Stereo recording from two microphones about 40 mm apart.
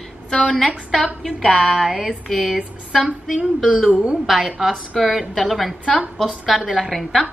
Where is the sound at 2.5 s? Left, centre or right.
Right.